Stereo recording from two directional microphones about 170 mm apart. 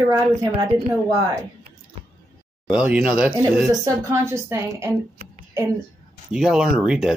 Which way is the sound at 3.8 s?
15° right (ahead or behind).